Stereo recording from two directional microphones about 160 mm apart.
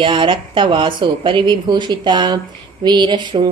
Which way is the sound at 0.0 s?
30° right (ahead or behind).